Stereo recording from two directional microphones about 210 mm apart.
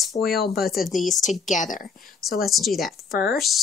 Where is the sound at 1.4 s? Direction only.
35° left (ahead or behind).